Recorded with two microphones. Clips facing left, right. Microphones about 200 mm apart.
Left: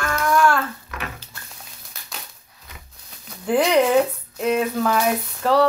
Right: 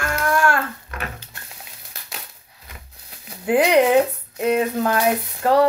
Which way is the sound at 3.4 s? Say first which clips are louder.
Right 2 dB; 10° right (ahead or behind).